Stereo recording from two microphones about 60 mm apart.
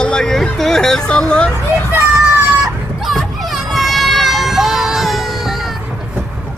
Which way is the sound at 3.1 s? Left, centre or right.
Centre.